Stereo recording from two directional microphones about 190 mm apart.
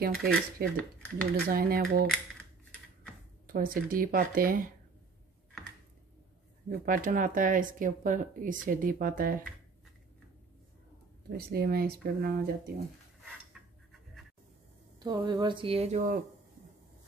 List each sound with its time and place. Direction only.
0.0 s speech: 50° right (ahead or behind)
0.7 s speech: 5° left (ahead or behind)
1.2 s speech: 50° right (ahead or behind)
3.4 s speech: 50° right (ahead or behind)
6.7 s speech: 45° right (ahead or behind)
11.3 s speech: 50° right (ahead or behind)
13.5 s a sound: centre (ahead or behind)
15.0 s speech: 20° right (ahead or behind)